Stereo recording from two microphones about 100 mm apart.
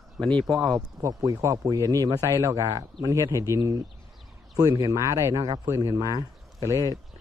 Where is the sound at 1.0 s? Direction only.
40° right (ahead or behind).